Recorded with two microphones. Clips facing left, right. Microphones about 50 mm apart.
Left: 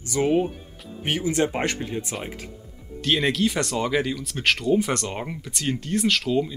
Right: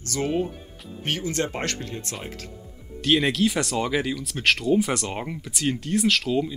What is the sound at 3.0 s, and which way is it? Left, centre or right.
Speech, centre.